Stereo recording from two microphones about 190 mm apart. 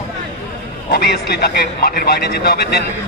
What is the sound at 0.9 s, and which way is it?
Speech, 55° left (ahead or behind).